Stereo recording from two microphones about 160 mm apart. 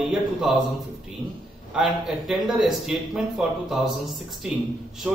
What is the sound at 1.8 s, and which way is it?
Speech, 5° right (ahead or behind).